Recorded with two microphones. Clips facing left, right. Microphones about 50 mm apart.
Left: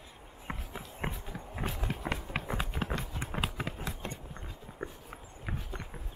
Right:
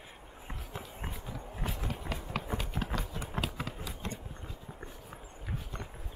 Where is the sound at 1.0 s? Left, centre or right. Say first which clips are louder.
Left 8 dB; left.